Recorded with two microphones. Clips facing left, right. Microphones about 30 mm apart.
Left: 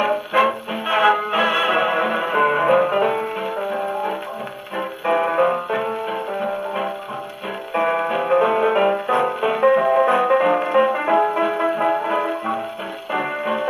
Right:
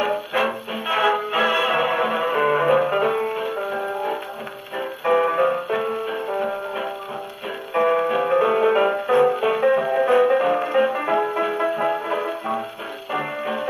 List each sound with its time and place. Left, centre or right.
0.0 s music: centre
4.7 s music: centre
5.3 s music: left
7.7 s music: centre
13.1 s music: centre